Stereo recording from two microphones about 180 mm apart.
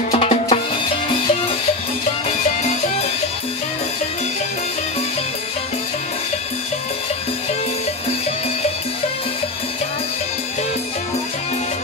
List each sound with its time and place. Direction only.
0.1 s music: 35° left (ahead or behind)